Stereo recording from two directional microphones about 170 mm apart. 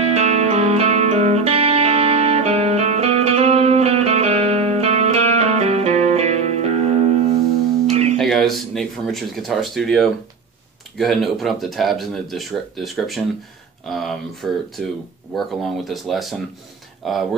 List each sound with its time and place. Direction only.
0.0 s music: 40° right (ahead or behind)
8.2 s speech: centre (ahead or behind)